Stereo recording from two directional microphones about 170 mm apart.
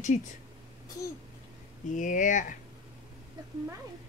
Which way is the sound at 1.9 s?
50° left (ahead or behind).